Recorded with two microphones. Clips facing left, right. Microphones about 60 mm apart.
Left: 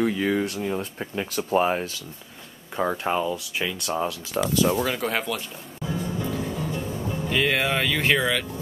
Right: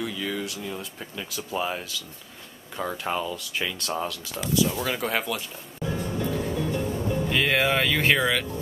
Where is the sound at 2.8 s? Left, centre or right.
Centre.